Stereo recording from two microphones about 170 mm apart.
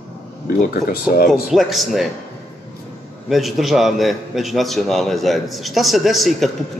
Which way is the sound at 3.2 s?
Centre (ahead or behind).